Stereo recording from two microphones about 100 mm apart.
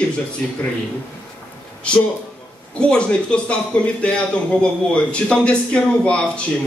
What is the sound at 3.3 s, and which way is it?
A man's voice, 10° left (ahead or behind).